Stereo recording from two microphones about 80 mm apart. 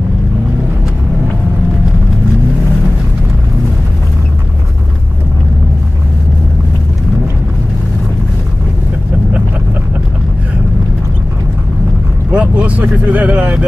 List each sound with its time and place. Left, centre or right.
12.3 s speech: centre